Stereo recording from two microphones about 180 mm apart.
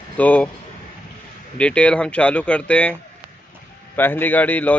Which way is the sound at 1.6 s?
5° left (ahead or behind).